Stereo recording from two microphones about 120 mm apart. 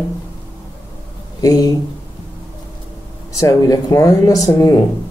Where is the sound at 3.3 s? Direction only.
30° left (ahead or behind).